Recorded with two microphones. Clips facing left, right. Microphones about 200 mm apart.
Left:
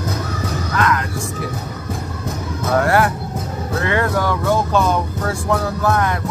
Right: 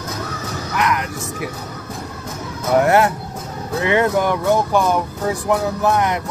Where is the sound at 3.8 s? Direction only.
20° right (ahead or behind).